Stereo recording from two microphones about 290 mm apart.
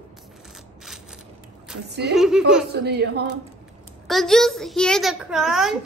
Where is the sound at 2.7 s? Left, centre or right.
Right.